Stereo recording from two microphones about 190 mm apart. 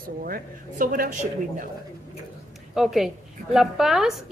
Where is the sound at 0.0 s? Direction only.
50° right (ahead or behind).